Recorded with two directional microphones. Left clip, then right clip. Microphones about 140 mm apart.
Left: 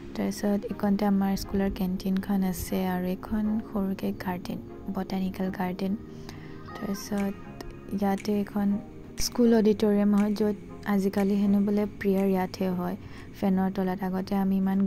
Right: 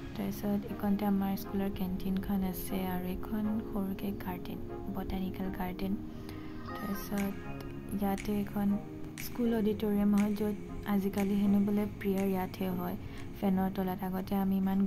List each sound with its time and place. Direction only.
0.2 s a woman's voice: 35° left (ahead or behind)
7.1 s a woman's voice: 30° left (ahead or behind)
9.2 s a woman's voice: 50° left (ahead or behind); by 14.8 s 30° left (ahead or behind)